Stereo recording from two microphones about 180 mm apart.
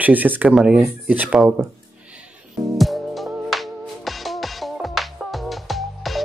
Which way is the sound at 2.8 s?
Centre (ahead or behind).